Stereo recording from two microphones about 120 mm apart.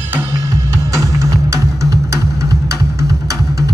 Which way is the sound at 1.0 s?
25° right (ahead or behind).